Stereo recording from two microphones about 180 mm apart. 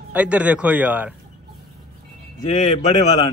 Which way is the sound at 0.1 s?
5° right (ahead or behind).